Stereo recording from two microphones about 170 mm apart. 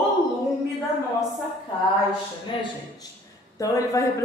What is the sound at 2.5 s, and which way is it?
Speech, 30° left (ahead or behind).